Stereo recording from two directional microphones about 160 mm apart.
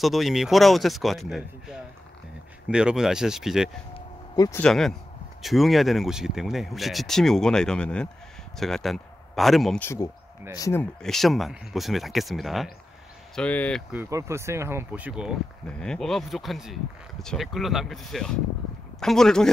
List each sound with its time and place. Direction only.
0.0 s speech: centre (ahead or behind)
4.4 s speech: 15° left (ahead or behind)
4.6 s a man's voice: centre (ahead or behind)
9.8 s speech: 15° left (ahead or behind)
11.0 s speech: centre (ahead or behind)
13.9 s speech: 20° right (ahead or behind)
15.6 s speech: 5° left (ahead or behind)